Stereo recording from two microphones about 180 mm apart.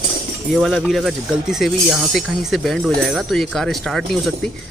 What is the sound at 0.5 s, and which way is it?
Speech, centre (ahead or behind).